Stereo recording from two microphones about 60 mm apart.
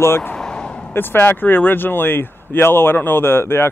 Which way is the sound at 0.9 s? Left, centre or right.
Left.